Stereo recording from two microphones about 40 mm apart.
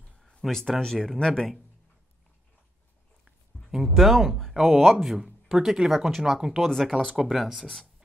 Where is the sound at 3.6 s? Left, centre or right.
Left.